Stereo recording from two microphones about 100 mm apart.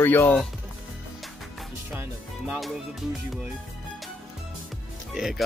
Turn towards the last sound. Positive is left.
turn(degrees=0)  # may be behind; listen again after turning